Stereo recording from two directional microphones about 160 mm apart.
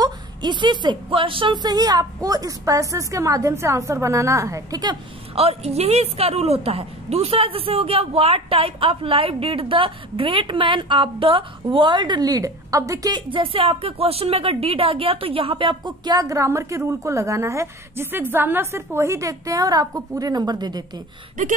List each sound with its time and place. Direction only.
0.0 s a woman's voice: 30° right (ahead or behind)
5.3 s a woman's voice: 40° right (ahead or behind)
21.4 s speech: 50° right (ahead or behind)